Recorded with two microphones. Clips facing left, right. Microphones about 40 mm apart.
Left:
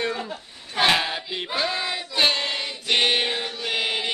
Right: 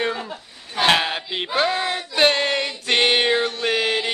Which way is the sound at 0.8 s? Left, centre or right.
Right.